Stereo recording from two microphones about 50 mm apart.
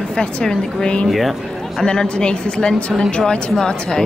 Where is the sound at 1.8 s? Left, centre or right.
Centre.